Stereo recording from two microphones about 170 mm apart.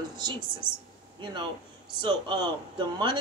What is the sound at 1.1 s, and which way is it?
Speech, 30° right (ahead or behind).